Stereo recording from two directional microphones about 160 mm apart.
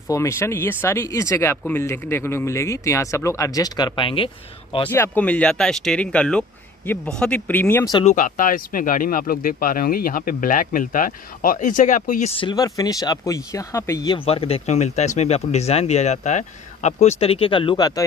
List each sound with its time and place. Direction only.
0.1 s speech: 15° left (ahead or behind)
4.8 s speech: 15° left (ahead or behind)
8.0 s speech: 50° left (ahead or behind)
12.4 s speech: 25° left (ahead or behind)
14.1 s speech: 35° left (ahead or behind)